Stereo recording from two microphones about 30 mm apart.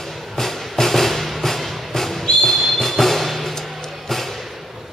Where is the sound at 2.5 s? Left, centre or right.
Centre.